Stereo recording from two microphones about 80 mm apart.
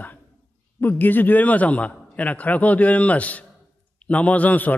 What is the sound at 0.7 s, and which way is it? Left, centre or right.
A man's voice, left.